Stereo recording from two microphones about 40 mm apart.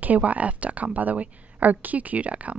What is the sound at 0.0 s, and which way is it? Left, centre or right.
A woman's voice, right.